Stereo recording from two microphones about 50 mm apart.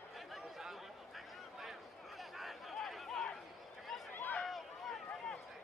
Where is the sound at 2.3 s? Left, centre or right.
Centre.